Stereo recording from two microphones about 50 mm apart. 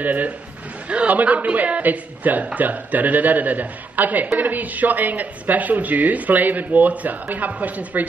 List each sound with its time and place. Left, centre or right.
0.0 s speech: right